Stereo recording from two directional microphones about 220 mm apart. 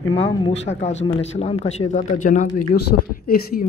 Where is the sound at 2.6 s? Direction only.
90° left.